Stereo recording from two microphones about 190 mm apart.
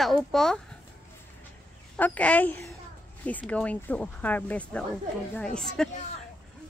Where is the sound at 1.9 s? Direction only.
10° left (ahead or behind).